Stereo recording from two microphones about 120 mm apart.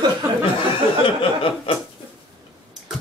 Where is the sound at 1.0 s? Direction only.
50° left (ahead or behind).